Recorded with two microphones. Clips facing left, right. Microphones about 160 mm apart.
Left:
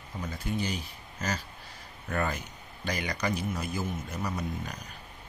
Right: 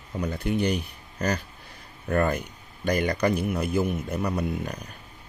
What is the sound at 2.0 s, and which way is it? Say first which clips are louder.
Speech: right 7 dB; 50° right (ahead or behind).